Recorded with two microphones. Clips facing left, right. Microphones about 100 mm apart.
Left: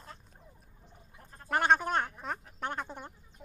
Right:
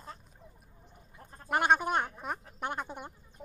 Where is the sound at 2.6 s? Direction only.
10° right (ahead or behind).